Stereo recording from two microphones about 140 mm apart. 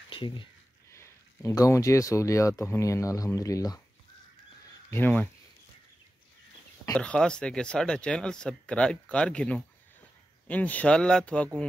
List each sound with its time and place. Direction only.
0.1 s speech: 35° left (ahead or behind)
0.9 s speech: 20° left (ahead or behind)
4.9 s speech: 15° left (ahead or behind)
6.9 s speech: 10° left (ahead or behind)